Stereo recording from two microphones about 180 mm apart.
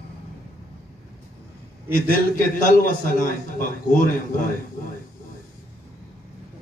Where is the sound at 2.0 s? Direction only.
50° left (ahead or behind).